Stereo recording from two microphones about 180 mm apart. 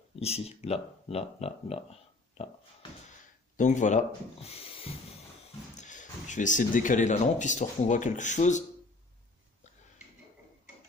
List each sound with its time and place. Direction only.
0.1 s speech: 35° left (ahead or behind)
3.5 s speech: 45° left (ahead or behind)
5.8 s speech: 45° left (ahead or behind)